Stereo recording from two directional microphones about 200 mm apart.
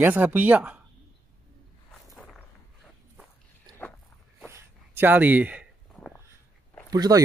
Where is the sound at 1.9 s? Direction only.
5° left (ahead or behind).